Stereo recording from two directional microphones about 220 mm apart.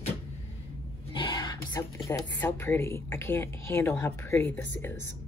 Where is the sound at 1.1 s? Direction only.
20° left (ahead or behind).